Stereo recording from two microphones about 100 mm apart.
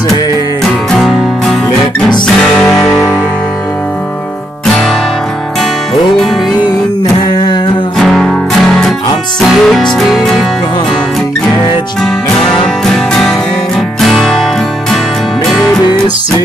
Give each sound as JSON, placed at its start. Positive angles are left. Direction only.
{"t": 0.9, "sound": "music", "side_deg": 0}
{"t": 2.6, "sound": "music", "side_deg": 30}
{"t": 2.9, "sound": "music", "side_deg": 0}
{"t": 8.0, "sound": "music", "side_deg": 5}
{"t": 12.8, "sound": "music", "side_deg": 5}